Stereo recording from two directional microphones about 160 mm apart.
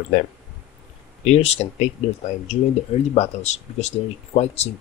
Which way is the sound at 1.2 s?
40° left (ahead or behind).